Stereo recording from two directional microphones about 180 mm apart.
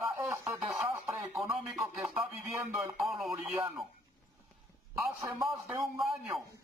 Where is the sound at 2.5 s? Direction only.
15° right (ahead or behind).